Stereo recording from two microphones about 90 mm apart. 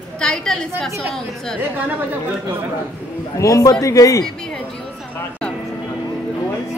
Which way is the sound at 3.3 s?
40° left (ahead or behind).